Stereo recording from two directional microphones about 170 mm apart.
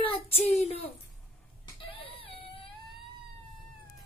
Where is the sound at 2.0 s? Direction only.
30° left (ahead or behind).